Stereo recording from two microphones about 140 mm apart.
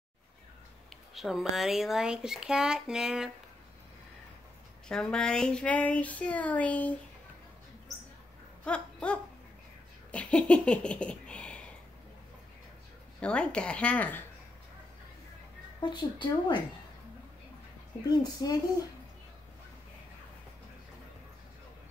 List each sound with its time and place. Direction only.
1.1 s speech: centre (ahead or behind)
4.8 s speech: 5° left (ahead or behind)
8.6 s a sound: 10° left (ahead or behind)
13.2 s speech: 5° left (ahead or behind)
15.8 s a woman's voice: 30° left (ahead or behind)
18.2 s speech: 30° left (ahead or behind)